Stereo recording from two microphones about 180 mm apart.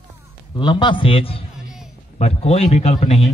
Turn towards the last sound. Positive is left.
turn(degrees=35)  # may be behind; listen again after turning